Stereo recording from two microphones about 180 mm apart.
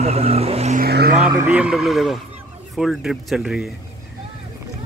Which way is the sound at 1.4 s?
5° right (ahead or behind).